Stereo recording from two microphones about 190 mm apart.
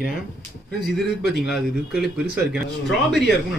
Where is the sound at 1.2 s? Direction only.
60° left (ahead or behind).